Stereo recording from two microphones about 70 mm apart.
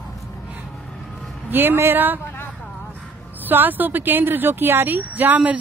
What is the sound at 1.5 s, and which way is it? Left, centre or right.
Speech, right.